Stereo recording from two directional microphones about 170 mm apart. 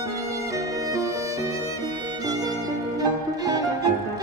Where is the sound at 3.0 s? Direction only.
20° right (ahead or behind).